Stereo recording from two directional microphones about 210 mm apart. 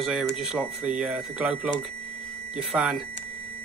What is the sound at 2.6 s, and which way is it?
Speech, 5° right (ahead or behind).